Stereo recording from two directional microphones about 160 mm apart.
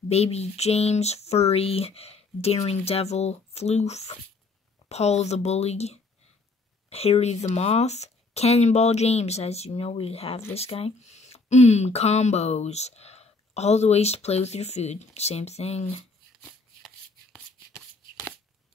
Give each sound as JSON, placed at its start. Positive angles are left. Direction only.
{"t": 0.1, "sound": "speech", "side_deg": 40}
{"t": 16.3, "sound": "shuffling cards", "side_deg": -5}